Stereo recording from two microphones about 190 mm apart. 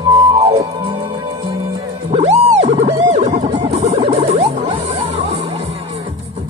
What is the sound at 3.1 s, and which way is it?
Music, 35° right (ahead or behind).